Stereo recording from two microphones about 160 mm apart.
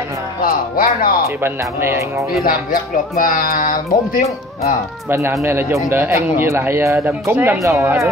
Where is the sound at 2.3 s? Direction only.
65° left (ahead or behind).